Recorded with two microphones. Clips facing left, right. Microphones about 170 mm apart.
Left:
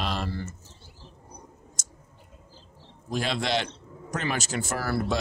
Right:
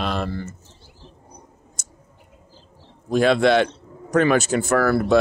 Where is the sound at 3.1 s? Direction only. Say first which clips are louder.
Right 11 dB; 55° right (ahead or behind).